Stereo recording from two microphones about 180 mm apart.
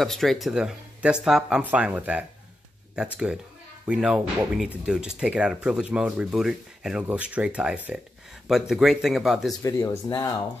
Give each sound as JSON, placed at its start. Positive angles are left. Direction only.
{"t": 0.0, "sound": "speech", "side_deg": 0}
{"t": 9.6, "sound": "speech", "side_deg": 15}